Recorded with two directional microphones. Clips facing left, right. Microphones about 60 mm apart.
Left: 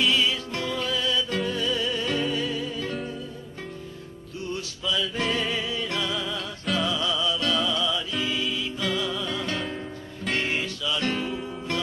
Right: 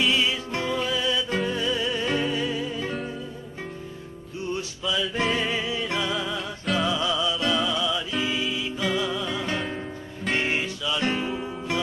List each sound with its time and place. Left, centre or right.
0.1 s music: centre
4.4 s music: right